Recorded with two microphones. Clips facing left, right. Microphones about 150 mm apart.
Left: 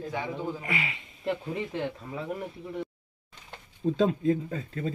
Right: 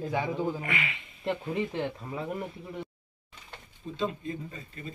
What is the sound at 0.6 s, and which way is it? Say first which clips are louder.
Speech: even; 30° left (ahead or behind).